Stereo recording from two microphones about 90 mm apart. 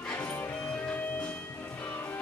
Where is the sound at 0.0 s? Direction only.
15° left (ahead or behind).